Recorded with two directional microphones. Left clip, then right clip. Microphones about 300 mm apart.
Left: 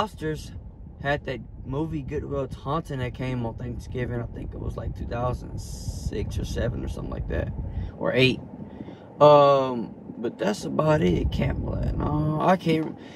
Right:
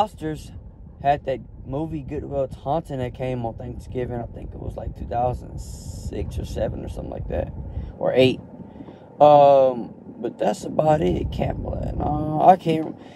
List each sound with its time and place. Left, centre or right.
0.0 s speech: centre